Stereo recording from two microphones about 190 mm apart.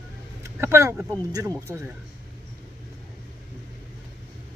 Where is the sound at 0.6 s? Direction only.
15° right (ahead or behind).